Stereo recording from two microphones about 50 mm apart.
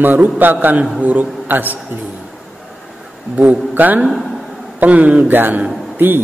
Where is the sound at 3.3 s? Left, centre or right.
Right.